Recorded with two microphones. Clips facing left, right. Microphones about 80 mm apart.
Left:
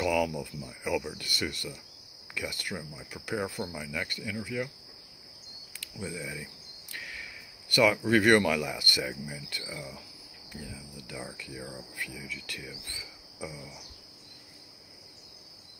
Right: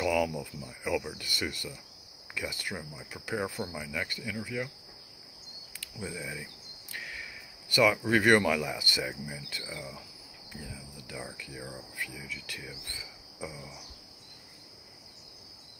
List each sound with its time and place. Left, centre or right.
0.0 s cricket: centre
5.8 s a sound: centre
7.8 s cricket: centre
11.0 s cricket: centre